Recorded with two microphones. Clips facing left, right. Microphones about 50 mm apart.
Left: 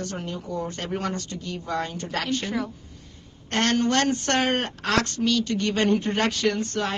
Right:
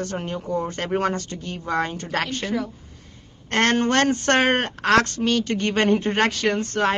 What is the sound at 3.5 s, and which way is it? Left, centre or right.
Speech, right.